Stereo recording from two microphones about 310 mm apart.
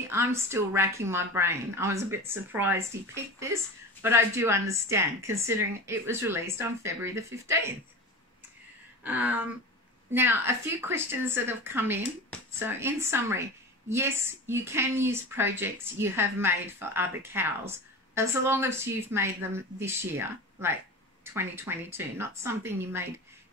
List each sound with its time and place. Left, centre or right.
0.1 s a woman's voice: centre
4.0 s a woman's voice: centre
9.0 s a sound: centre
10.1 s a woman's voice: centre